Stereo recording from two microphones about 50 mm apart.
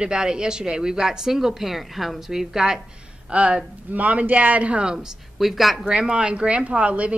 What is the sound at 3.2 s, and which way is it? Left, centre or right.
Speech, right.